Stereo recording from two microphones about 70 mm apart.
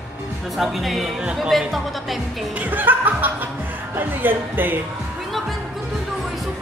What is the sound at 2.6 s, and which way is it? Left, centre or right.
A woman's voice, right.